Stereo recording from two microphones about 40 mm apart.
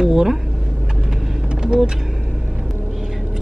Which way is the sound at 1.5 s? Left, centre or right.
Right.